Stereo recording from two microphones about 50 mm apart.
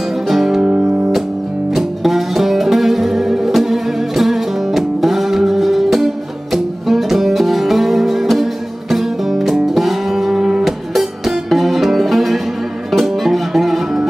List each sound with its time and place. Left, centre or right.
0.3 s music: centre
0.6 s music: right
1.8 s music: centre